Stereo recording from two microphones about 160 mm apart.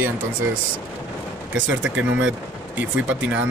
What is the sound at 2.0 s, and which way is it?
Speech, 10° right (ahead or behind).